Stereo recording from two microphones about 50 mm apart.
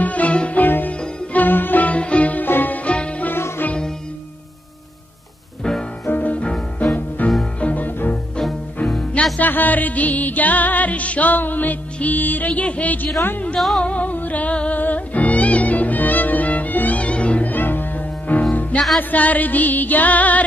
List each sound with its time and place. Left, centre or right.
0.0 s music: left
0.6 s music: left
2.4 s music: left
2.8 s music: left
3.3 s music: left
5.6 s music: centre
6.0 s music: left
9.4 s music: left